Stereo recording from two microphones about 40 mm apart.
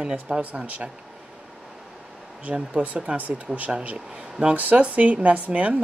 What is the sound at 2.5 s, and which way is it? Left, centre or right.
Speech, right.